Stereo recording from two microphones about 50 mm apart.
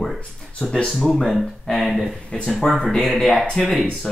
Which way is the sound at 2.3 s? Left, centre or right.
Centre.